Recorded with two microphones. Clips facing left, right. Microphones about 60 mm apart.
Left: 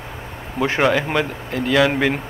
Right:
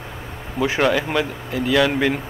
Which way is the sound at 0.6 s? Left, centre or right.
Left.